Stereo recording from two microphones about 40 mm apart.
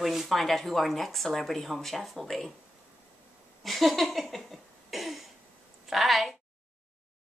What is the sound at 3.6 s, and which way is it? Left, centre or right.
Cough, centre.